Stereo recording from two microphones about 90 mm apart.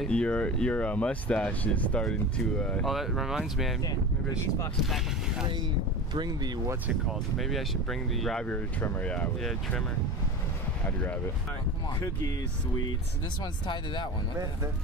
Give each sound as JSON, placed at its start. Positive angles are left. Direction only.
{"t": 0.0, "sound": "speech", "side_deg": 10}
{"t": 2.9, "sound": "speech", "side_deg": -5}
{"t": 3.8, "sound": "speech", "side_deg": 40}
{"t": 4.8, "sound": "speech", "side_deg": 0}
{"t": 6.1, "sound": "speech", "side_deg": -55}
{"t": 7.1, "sound": "speech", "side_deg": 0}
{"t": 8.5, "sound": "speech", "side_deg": 15}
{"t": 13.4, "sound": "speech", "side_deg": 60}